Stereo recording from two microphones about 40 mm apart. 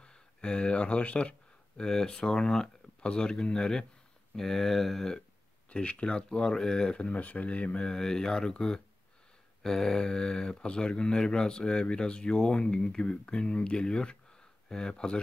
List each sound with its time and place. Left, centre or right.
0.0 s speech: left
1.8 s speech: centre
4.4 s speech: centre
5.7 s speech: left
7.1 s speech: left
7.9 s speech: centre